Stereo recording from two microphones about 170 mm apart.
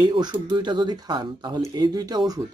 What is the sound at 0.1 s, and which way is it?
Speech, 25° right (ahead or behind).